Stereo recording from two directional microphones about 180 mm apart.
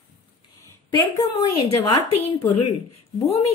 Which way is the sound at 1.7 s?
20° left (ahead or behind).